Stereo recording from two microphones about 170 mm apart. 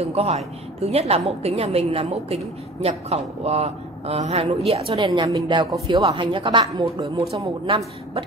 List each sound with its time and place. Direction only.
0.1 s a woman's voice: 35° right (ahead or behind)